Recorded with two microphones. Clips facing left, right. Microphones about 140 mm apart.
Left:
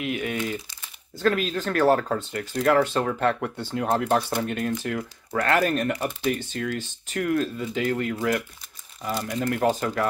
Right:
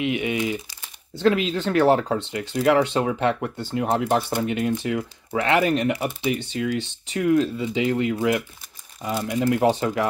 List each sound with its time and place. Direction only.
0.0 s speech: 15° right (ahead or behind)
2.5 s speech: 10° right (ahead or behind)
6.8 s speech: 65° right (ahead or behind)
7.2 s speech: 15° right (ahead or behind)
9.5 s speech: 20° right (ahead or behind)